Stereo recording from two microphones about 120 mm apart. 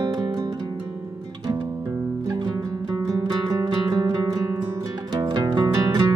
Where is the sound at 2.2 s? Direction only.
35° right (ahead or behind).